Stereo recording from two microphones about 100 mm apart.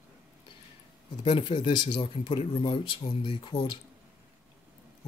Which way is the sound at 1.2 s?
60° left (ahead or behind).